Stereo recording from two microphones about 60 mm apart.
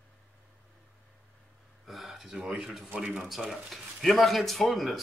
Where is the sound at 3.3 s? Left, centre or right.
Centre.